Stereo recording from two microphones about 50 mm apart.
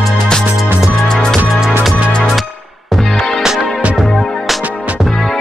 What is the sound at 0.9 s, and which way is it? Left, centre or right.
Music, centre.